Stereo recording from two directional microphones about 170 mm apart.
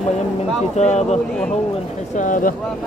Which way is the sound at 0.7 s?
40° left (ahead or behind).